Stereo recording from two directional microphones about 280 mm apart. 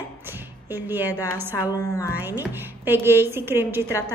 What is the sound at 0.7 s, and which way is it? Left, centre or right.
Speech, centre.